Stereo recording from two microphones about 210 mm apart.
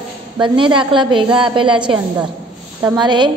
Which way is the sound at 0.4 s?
25° right (ahead or behind).